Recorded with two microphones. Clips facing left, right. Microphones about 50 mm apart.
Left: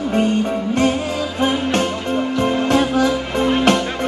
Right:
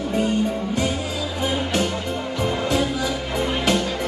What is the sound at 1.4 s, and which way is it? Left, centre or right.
Music, left.